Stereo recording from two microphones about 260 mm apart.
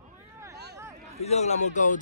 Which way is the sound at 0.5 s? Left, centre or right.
Right.